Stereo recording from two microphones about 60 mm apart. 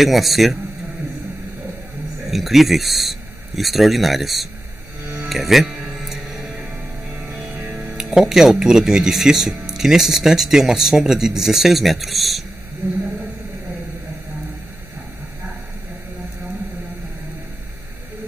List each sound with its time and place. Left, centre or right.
0.0 s speech: centre
2.2 s speech: centre
5.3 s music: centre
7.8 s speech: centre
12.8 s speech: right